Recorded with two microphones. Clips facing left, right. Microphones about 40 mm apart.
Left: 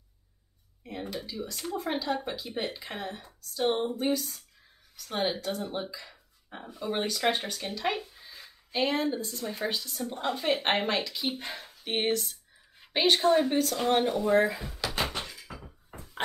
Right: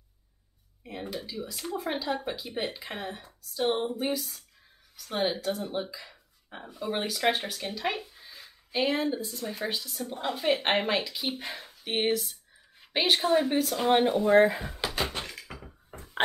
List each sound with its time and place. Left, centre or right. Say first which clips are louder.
0.8 s speech: even; centre
14.3 s speech: right 5 dB; right